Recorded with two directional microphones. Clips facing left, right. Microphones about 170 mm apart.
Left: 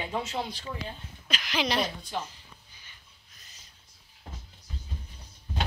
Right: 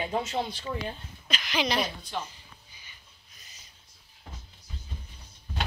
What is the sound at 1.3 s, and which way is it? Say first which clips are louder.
Speech: even; 5° left (ahead or behind).